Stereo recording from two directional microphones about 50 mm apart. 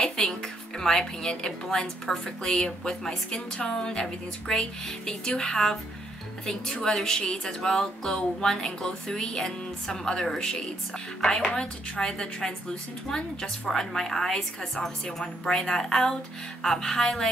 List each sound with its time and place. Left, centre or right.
0.0 s speech: centre